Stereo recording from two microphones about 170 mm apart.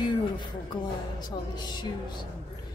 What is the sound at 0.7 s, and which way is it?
Speech, 25° left (ahead or behind).